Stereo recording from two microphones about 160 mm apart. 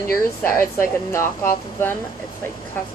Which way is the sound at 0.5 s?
15° left (ahead or behind).